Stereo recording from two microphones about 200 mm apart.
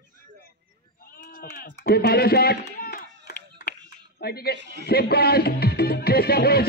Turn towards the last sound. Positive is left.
turn(degrees=50)  # may be behind; listen again after turning